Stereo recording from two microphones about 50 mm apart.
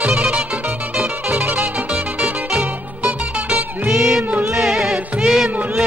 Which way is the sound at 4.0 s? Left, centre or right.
Centre.